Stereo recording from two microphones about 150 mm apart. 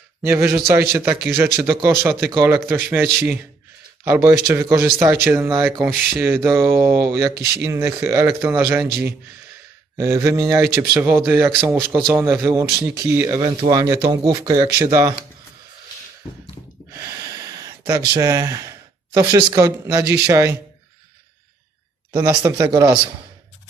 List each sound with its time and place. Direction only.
0.2 s speech: 15° right (ahead or behind)
4.0 s speech: 20° right (ahead or behind)
13.4 s speech: 30° right (ahead or behind)
16.9 s a sound: 20° right (ahead or behind)
18.1 s speech: 25° right (ahead or behind)
20.1 s speech: 10° right (ahead or behind)
22.1 s speech: 25° right (ahead or behind)